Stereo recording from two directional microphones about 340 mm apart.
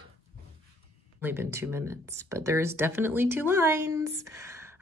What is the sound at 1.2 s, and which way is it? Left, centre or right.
Speech, centre.